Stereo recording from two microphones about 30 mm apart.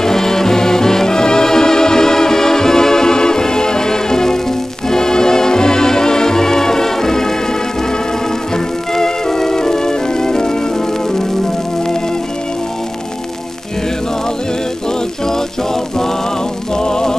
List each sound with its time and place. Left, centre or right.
0.0 s music: centre
8.9 s music: centre
16.7 s music: left